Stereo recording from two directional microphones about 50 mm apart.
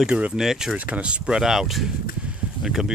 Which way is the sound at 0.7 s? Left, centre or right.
Right.